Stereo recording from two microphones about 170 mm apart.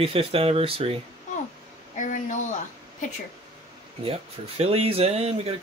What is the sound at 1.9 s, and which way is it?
A woman's voice, 45° left (ahead or behind).